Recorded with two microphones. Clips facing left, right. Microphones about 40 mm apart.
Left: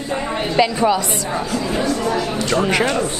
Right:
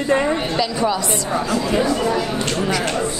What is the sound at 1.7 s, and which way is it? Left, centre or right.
Speech, centre.